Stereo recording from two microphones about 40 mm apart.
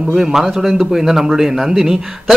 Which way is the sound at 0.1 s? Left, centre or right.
Centre.